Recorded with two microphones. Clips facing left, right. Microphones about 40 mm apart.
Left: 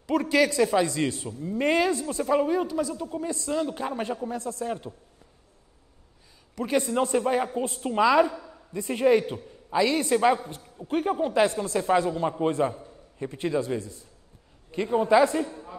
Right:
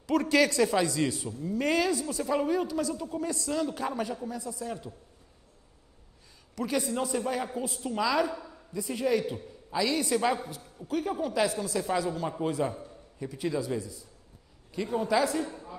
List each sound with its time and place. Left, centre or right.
0.0 s a man's voice: centre
0.8 s a man's voice: left
2.2 s a man's voice: centre
4.4 s a man's voice: left
4.6 s a man's voice: left
6.5 s a man's voice: left